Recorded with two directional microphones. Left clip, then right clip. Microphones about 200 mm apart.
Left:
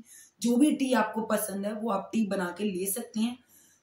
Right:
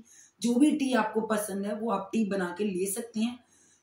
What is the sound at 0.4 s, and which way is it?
Speech, 20° left (ahead or behind).